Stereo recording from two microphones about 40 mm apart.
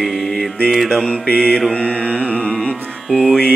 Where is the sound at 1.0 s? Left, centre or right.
Left.